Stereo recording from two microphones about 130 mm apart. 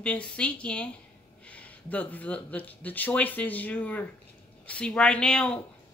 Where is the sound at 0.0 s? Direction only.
10° left (ahead or behind).